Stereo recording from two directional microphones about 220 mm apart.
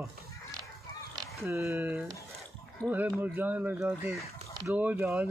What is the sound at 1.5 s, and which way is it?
Speech, 10° right (ahead or behind).